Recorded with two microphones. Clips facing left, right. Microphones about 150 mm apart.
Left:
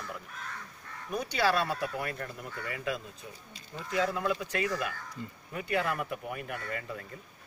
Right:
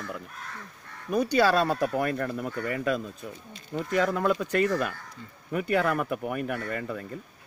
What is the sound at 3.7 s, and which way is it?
Speech, 70° right (ahead or behind).